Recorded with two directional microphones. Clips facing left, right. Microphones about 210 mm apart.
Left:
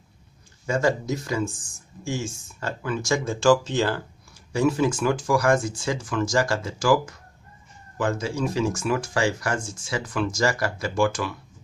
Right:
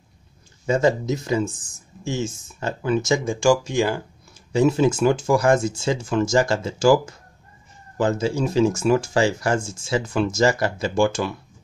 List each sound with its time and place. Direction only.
0.7 s speech: 20° right (ahead or behind)
4.5 s speech: 25° right (ahead or behind)